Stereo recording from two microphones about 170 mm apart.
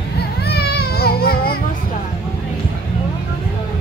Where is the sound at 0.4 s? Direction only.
70° left (ahead or behind).